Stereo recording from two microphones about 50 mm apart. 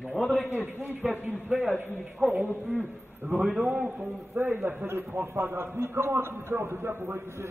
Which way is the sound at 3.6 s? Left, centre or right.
Right.